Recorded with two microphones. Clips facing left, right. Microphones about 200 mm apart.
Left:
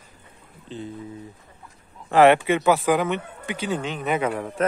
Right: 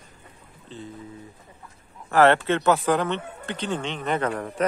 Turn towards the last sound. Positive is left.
turn(degrees=5)  # may be behind; listen again after turning